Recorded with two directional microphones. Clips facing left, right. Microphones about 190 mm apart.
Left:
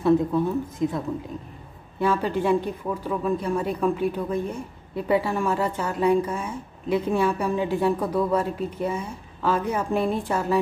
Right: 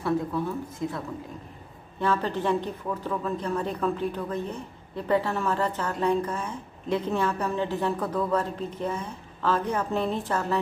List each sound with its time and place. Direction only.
0.0 s a woman's voice: 20° left (ahead or behind)